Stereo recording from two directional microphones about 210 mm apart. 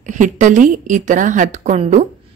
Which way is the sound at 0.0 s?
35° right (ahead or behind).